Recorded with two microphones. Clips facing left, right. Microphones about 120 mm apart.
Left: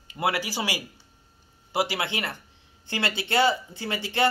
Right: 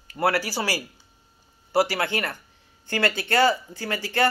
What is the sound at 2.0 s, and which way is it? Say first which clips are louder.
Speech: right 4 dB; 45° right (ahead or behind).